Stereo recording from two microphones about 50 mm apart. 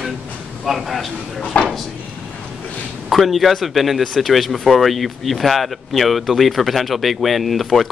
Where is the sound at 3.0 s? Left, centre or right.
Centre.